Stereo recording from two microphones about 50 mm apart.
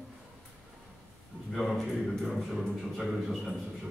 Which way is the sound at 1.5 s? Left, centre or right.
Centre.